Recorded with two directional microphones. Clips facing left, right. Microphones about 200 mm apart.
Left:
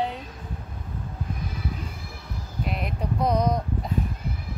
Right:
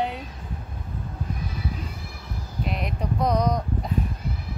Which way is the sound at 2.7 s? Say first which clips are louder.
Right 1 dB; 5° left (ahead or behind).